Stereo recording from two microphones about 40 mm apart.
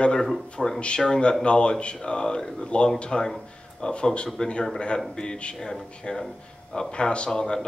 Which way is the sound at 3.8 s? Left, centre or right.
Left.